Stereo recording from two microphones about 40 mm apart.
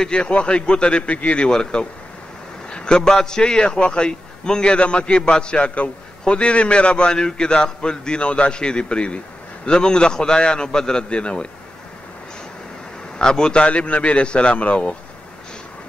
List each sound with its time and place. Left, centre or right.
0.0 s a man's voice: left
1.4 s a man's voice: left
13.2 s a man's voice: centre
13.7 s a man's voice: left